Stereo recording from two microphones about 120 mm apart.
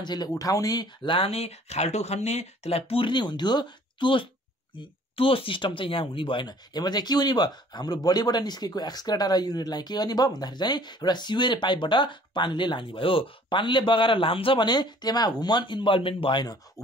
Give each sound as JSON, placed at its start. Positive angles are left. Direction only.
{"t": 0.0, "sound": "speech", "side_deg": 35}